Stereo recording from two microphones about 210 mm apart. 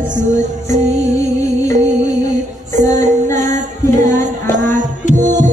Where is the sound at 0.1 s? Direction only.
35° right (ahead or behind).